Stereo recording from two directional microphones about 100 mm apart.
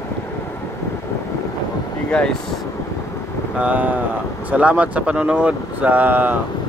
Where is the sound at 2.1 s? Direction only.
10° left (ahead or behind).